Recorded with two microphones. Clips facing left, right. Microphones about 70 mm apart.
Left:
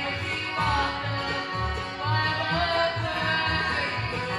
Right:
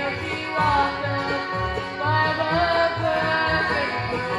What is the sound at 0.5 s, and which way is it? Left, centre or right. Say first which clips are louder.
Music: right 6 dB; right.